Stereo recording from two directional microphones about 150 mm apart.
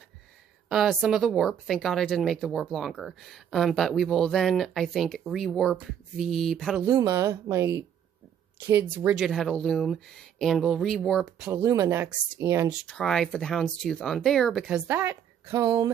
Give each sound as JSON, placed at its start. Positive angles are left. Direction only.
{"t": 0.7, "sound": "speech", "side_deg": 0}
{"t": 6.8, "sound": "a woman's voice", "side_deg": -20}
{"t": 11.5, "sound": "speech", "side_deg": -15}
{"t": 12.8, "sound": "speech", "side_deg": 5}
{"t": 14.9, "sound": "speech", "side_deg": -15}